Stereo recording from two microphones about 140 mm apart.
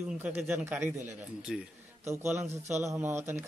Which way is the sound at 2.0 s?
20° right (ahead or behind).